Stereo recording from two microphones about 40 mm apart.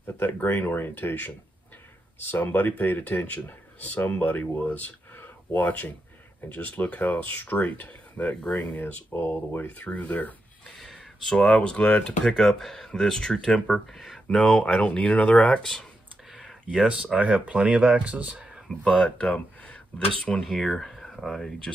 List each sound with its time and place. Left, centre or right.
0.0 s speech: left
8.5 s speech: left
8.7 s speech: left
9.1 s speech: left
9.7 s speech: left
11.3 s speech: left
12.4 s speech: centre
14.6 s speech: left
16.8 s speech: right
18.9 s speech: centre
19.1 s speech: left
20.3 s speech: centre